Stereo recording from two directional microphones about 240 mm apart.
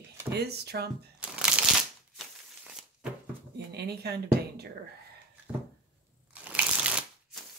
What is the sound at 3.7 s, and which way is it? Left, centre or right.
Speech, right.